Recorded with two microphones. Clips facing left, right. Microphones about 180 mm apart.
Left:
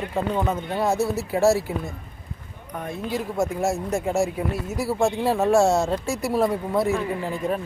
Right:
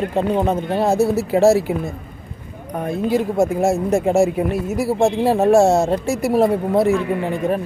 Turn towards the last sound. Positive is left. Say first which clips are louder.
# right 6 dB
turn(degrees=-65)  # may be behind; listen again after turning